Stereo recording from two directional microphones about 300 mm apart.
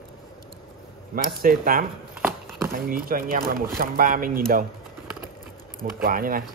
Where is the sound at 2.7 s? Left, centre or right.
Right.